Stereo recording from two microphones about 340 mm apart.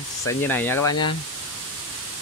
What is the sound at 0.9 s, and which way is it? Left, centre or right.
Speech, left.